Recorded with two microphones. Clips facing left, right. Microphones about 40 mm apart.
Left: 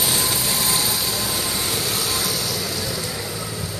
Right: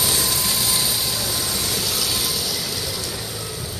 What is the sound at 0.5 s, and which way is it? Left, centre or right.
Vehicle, left.